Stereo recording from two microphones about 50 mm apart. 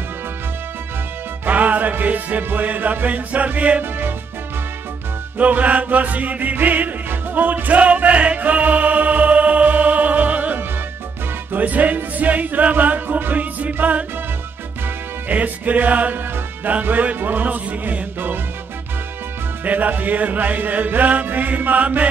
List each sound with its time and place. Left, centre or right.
1.4 s music: right
5.4 s music: right
15.2 s music: right
17.6 s music: right
19.6 s music: right